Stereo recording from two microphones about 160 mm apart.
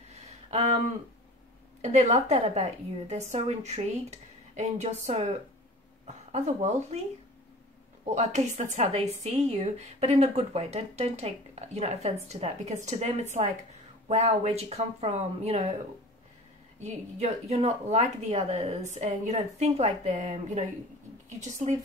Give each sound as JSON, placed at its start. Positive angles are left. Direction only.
{"t": 0.1, "sound": "a sound", "side_deg": -40}
{"t": 1.8, "sound": "a woman's voice", "side_deg": -45}
{"t": 8.0, "sound": "a woman's voice", "side_deg": -45}
{"t": 16.8, "sound": "a woman's voice", "side_deg": -45}